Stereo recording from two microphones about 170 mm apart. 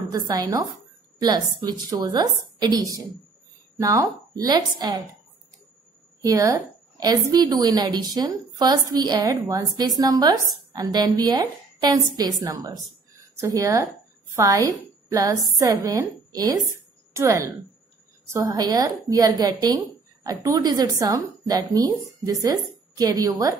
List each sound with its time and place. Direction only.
0.1 s a woman's voice: 20° right (ahead or behind)
6.2 s a woman's voice: 20° right (ahead or behind)